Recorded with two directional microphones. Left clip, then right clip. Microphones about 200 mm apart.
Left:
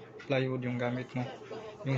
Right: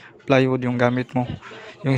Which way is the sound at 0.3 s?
55° right (ahead or behind).